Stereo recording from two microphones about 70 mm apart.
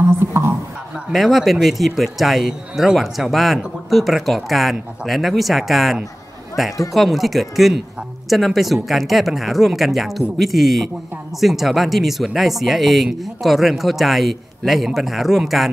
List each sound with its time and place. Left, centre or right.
0.2 s a woman's voice: right
1.1 s a man's voice: centre